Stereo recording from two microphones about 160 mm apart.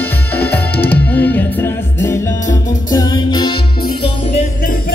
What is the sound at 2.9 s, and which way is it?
Music, 25° left (ahead or behind).